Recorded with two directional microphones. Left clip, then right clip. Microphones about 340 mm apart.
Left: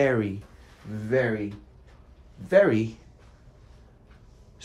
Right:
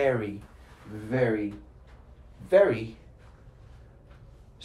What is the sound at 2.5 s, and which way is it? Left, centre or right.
Speech, left.